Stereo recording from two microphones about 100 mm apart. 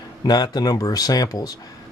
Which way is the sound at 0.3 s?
45° left (ahead or behind).